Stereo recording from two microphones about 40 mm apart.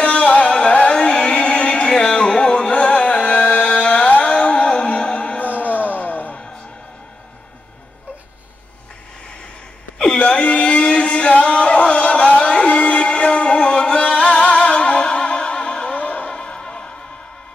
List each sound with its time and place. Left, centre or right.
0.0 s music: left
1.0 s a sound: left
1.9 s music: left
5.4 s a sound: left
10.1 s singing: left
16.0 s music: left